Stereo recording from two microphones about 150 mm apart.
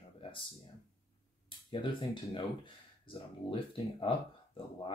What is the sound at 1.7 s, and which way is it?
Speech, 35° left (ahead or behind).